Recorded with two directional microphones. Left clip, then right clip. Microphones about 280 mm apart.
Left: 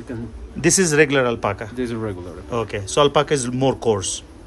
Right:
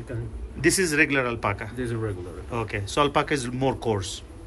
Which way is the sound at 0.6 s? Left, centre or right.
Centre.